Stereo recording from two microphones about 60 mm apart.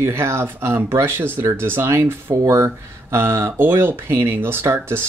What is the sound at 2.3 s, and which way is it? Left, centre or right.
Speech, right.